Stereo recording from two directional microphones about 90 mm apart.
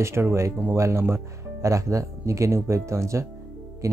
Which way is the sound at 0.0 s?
30° right (ahead or behind).